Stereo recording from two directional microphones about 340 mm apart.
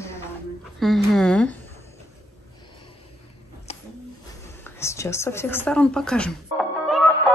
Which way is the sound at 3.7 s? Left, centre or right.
Centre.